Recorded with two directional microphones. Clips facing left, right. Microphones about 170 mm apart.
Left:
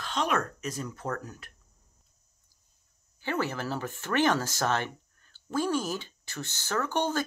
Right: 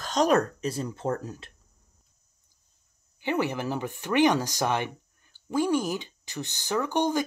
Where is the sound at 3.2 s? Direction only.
15° right (ahead or behind).